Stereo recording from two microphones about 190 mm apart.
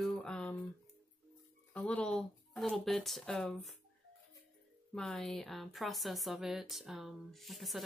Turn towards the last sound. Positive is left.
turn(degrees=0)  # may be behind; listen again after turning